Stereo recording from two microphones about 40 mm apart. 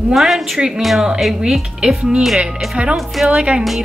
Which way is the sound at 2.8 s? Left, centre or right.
Right.